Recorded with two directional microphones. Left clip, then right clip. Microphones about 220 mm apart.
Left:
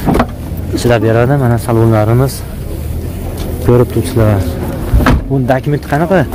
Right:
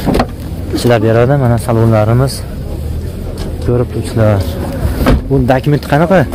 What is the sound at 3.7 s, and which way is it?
Vehicle, 35° left (ahead or behind).